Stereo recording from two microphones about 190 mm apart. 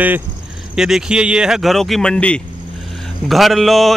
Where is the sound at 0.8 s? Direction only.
5° right (ahead or behind).